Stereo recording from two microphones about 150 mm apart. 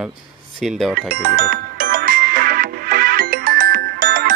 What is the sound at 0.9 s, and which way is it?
Music, 70° right (ahead or behind).